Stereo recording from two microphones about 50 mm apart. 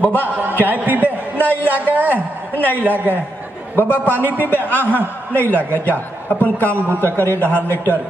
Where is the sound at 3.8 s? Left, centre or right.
Left.